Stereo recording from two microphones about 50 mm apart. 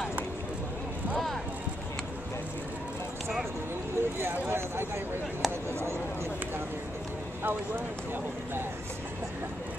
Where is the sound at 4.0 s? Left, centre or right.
Right.